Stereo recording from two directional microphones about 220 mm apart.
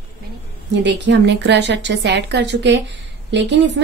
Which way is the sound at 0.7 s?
50° right (ahead or behind).